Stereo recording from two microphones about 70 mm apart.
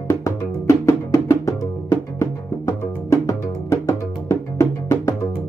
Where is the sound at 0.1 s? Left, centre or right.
Left.